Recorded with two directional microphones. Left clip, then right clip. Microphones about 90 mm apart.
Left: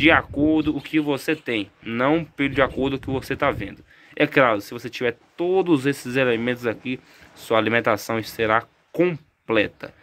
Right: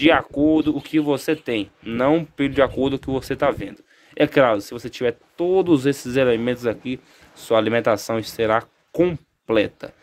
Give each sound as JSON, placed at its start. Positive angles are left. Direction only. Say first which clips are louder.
{"t": 0.0, "sound": "speech", "louder": "right 1 dB", "side_deg": -35}